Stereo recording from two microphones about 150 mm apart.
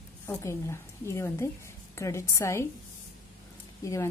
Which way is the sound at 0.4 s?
20° left (ahead or behind).